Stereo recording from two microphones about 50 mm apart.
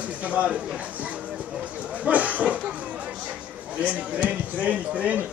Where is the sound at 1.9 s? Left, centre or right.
Right.